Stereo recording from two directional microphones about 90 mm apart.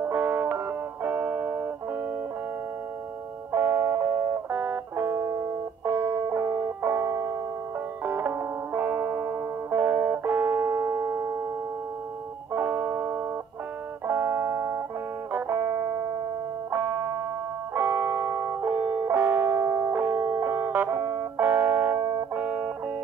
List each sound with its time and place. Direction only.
0.0 s music: 20° right (ahead or behind)
3.5 s music: 25° right (ahead or behind)
12.5 s music: 25° right (ahead or behind)